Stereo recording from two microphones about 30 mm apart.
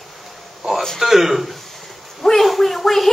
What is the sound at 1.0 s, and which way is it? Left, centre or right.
A child's voice, centre.